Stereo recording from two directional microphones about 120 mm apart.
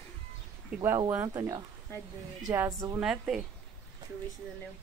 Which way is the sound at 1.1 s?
25° right (ahead or behind).